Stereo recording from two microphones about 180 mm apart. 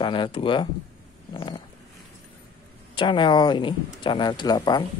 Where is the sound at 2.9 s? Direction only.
25° left (ahead or behind).